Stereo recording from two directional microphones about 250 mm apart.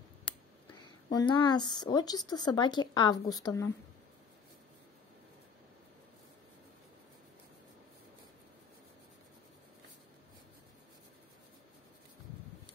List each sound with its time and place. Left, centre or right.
1.1 s speech: centre